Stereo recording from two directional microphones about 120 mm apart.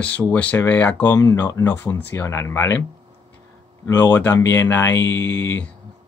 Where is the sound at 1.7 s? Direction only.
15° left (ahead or behind).